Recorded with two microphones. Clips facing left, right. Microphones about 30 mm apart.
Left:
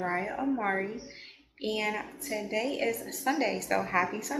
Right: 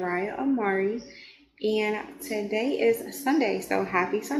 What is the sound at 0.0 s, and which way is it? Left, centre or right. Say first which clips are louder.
A woman's voice: right 3 dB; centre.